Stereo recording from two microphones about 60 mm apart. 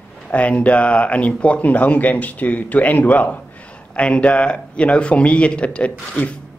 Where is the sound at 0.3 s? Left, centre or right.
Left.